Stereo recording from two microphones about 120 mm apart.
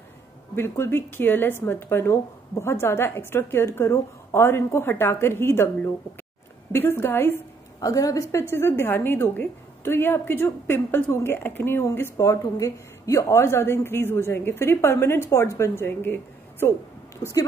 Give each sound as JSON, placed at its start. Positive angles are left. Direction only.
{"t": 0.6, "sound": "a woman's voice", "side_deg": 20}
{"t": 6.7, "sound": "a woman's voice", "side_deg": 20}